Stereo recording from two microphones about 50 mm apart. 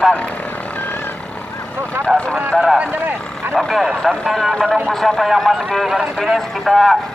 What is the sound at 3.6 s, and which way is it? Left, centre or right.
A man's voice, centre.